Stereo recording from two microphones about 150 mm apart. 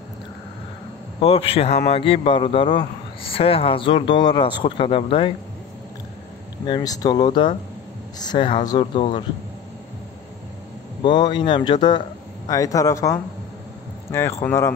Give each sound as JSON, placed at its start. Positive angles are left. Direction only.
{"t": 1.2, "sound": "speech", "side_deg": 40}
{"t": 6.6, "sound": "speech", "side_deg": 30}
{"t": 11.0, "sound": "speech", "side_deg": 30}
{"t": 14.4, "sound": "speech", "side_deg": 20}